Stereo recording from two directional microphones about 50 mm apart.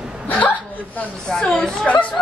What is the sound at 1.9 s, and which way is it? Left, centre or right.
Speech, left.